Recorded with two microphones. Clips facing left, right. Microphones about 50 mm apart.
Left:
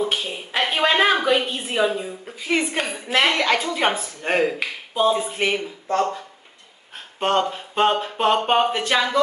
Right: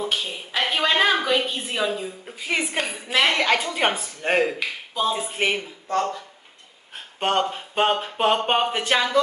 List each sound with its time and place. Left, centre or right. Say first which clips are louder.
0.0 s a sound: left 3 dB; centre
1.7 s a woman's voice: left 4 dB; centre
2.2 s speech: left 4 dB; centre
2.8 s a woman's voice: left 1 dB; centre
3.3 s speech: left 1 dB; centre
4.6 s speech: left 3 dB; centre
5.1 s speech: left 2 dB; centre
5.9 s speech: left 2 dB; left
7.2 s speech: left 2 dB; centre